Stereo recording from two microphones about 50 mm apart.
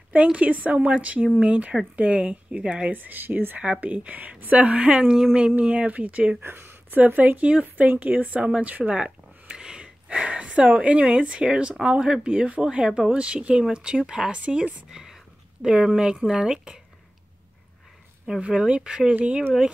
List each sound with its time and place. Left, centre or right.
0.1 s speech: right
2.9 s speech: right
5.1 s a woman's voice: centre
5.6 s speech: right
6.4 s speech: right
8.9 s speech: centre
14.9 s whispering: centre
15.6 s a woman's voice: centre
18.9 s a woman's voice: centre